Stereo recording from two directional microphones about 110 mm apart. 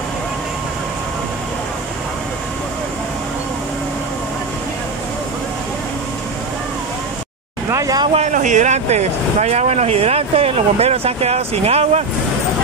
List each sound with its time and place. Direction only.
7.7 s vehicle: 35° right (ahead or behind)
8.1 s speech: 90° right; by 12.0 s 70° right (ahead or behind)